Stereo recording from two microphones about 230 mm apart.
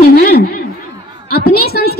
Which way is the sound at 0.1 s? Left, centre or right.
Left.